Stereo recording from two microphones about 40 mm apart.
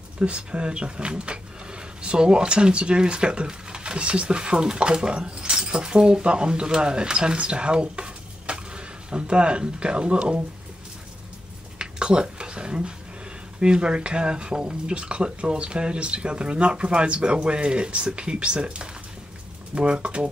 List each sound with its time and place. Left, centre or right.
0.2 s speech: right
11.8 s a sound: right
13.6 s speech: right